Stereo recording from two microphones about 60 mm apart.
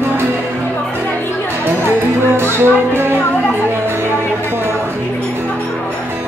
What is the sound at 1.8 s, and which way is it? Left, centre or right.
Music, right.